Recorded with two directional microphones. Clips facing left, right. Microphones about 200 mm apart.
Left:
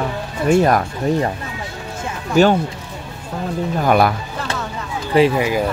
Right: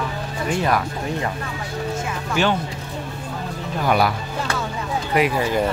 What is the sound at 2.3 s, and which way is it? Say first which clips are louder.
Speech: left 8 dB; 40° left (ahead or behind).